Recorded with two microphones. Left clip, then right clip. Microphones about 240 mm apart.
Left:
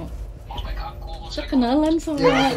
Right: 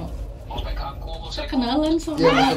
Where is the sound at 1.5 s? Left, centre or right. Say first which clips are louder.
Left 2 dB; centre.